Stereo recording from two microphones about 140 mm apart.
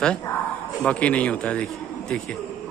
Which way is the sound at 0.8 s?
10° left (ahead or behind).